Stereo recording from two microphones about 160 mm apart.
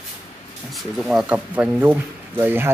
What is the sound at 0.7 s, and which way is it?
Speech, centre (ahead or behind).